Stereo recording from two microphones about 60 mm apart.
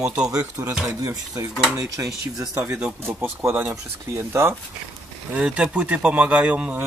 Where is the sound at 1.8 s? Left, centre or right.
Right.